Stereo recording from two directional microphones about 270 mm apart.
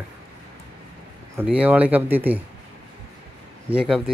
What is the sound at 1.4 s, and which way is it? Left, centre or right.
Speech, centre.